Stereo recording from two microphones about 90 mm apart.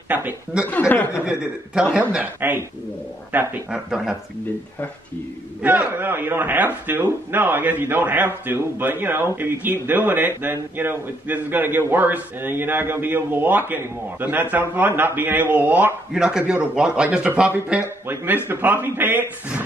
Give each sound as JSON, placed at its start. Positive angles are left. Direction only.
{"t": 0.7, "sound": "speech", "side_deg": 20}
{"t": 1.2, "sound": "a man's voice", "side_deg": -10}
{"t": 3.9, "sound": "speech", "side_deg": -5}
{"t": 5.6, "sound": "a man's voice", "side_deg": -15}
{"t": 16.1, "sound": "speech", "side_deg": -5}
{"t": 17.8, "sound": "a man's voice", "side_deg": -25}